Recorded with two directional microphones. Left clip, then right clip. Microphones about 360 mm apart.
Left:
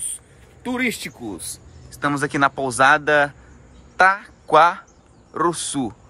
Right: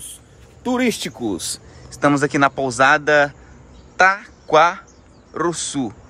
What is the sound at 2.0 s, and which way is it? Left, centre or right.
Speech, centre.